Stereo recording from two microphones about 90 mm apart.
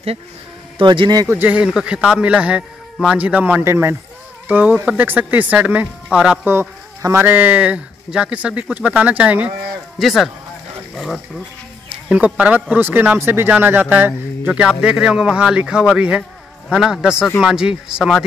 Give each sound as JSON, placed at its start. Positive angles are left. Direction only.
{"t": 0.7, "sound": "a man's voice", "side_deg": -60}
{"t": 1.3, "sound": "speech", "side_deg": -20}
{"t": 6.4, "sound": "speech", "side_deg": -25}
{"t": 7.0, "sound": "speech", "side_deg": -35}
{"t": 7.2, "sound": "speech", "side_deg": -20}
{"t": 9.9, "sound": "speech", "side_deg": 0}
{"t": 12.4, "sound": "speech", "side_deg": -15}